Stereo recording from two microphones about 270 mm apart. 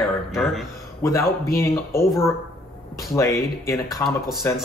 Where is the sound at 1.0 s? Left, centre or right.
Centre.